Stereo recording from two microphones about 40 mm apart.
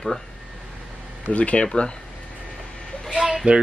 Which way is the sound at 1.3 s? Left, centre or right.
Left.